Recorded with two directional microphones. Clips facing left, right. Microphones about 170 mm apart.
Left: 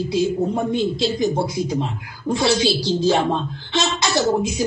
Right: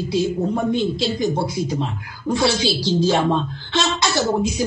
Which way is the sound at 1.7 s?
20° left (ahead or behind).